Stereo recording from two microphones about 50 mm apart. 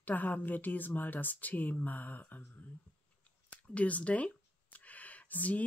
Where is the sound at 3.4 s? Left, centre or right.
Left.